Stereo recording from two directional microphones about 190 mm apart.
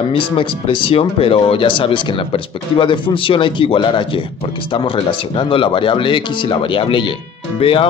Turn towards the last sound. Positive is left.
turn(degrees=30)  # may be behind; listen again after turning